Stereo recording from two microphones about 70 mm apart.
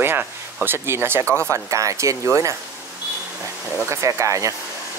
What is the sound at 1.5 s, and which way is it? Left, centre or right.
Speech, right.